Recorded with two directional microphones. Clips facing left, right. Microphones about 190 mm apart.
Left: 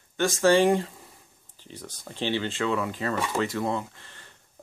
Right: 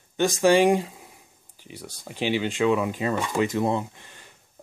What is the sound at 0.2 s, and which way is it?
Speech, 15° right (ahead or behind).